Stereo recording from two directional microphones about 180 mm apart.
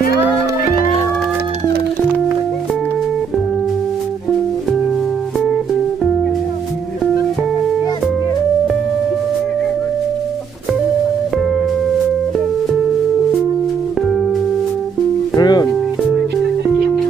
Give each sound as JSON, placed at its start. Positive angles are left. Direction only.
{"t": 15.3, "sound": "music", "side_deg": 20}